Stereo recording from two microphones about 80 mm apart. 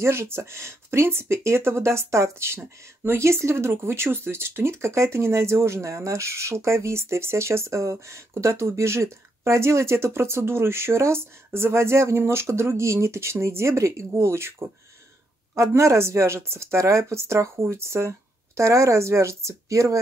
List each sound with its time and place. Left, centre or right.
0.0 s speech: right